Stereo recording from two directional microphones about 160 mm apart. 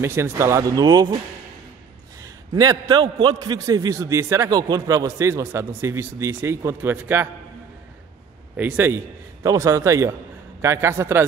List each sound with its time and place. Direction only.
0.0 s speech: 15° right (ahead or behind)
2.2 s a man's voice: 20° right (ahead or behind)
8.5 s a man's voice: 10° right (ahead or behind)